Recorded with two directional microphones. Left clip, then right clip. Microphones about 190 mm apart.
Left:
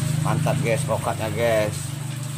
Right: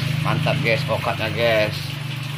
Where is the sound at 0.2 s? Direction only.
5° left (ahead or behind).